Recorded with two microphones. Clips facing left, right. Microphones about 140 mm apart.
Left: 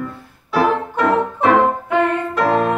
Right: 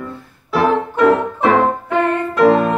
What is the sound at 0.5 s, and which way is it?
Music, centre (ahead or behind).